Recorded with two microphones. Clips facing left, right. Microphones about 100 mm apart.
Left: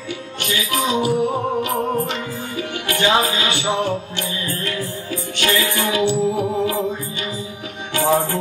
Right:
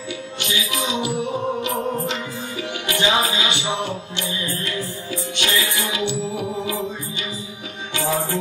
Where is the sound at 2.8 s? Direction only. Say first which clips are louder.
Left 3 dB; 45° left (ahead or behind).